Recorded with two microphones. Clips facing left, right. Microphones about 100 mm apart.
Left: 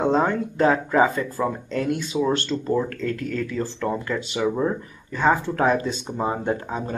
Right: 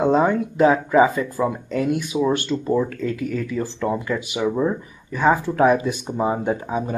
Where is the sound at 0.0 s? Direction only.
10° right (ahead or behind).